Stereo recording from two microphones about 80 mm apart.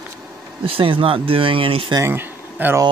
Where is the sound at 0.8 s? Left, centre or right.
Right.